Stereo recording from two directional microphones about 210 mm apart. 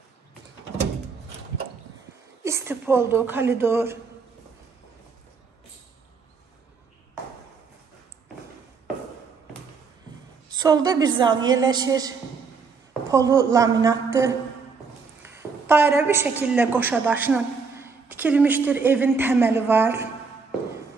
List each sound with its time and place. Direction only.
2.4 s a woman's voice: 15° right (ahead or behind)
10.6 s a woman's voice: 20° right (ahead or behind)
15.6 s a woman's voice: 10° right (ahead or behind)